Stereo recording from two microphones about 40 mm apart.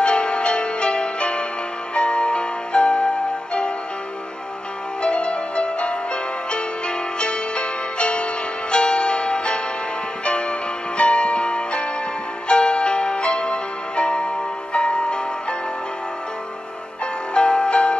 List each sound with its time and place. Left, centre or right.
0.0 s music: left
5.0 s music: left
11.0 s music: left
17.0 s music: left